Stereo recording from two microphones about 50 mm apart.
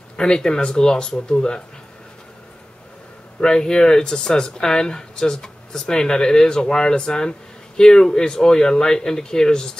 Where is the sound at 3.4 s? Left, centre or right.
Centre.